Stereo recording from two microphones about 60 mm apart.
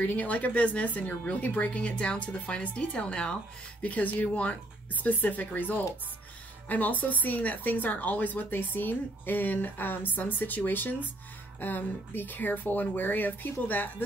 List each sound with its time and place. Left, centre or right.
0.0 s a woman's voice: left
3.8 s a woman's voice: left